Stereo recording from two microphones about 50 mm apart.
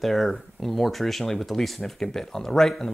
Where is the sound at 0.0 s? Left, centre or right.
Centre.